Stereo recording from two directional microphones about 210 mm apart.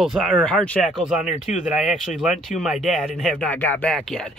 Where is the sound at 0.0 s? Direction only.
Centre (ahead or behind).